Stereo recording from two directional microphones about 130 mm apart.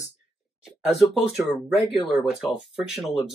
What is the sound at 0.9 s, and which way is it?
Speech, centre (ahead or behind).